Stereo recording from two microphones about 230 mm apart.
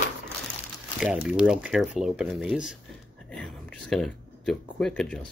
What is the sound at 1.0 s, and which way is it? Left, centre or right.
Speech, centre.